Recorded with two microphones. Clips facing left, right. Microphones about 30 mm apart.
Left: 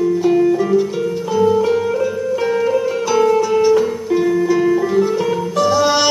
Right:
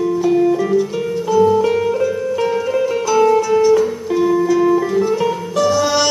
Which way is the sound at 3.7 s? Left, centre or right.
Centre.